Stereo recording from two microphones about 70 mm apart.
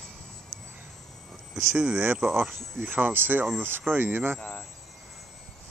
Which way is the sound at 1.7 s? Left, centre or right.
Centre.